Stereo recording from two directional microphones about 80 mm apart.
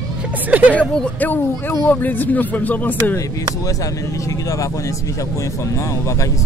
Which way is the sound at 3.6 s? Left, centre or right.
Left.